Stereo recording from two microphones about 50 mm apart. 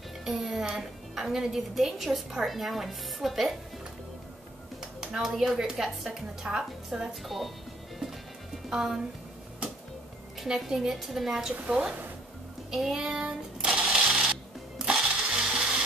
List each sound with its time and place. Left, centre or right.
0.2 s a woman's voice: centre
5.0 s a woman's voice: centre
7.2 s a woman's voice: centre
8.6 s speech: centre
10.4 s a woman's voice: centre
11.5 s speech: right
12.7 s a sound: centre; by 13.9 s right
14.0 s music: right
14.8 s a sound: centre